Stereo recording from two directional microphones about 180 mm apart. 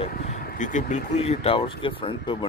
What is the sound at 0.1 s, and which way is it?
Speech, 50° left (ahead or behind).